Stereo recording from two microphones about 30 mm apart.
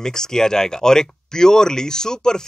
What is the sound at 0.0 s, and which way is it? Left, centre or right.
Speech, centre.